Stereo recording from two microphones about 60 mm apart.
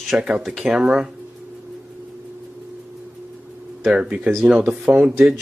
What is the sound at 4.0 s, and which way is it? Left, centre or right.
Speech, centre.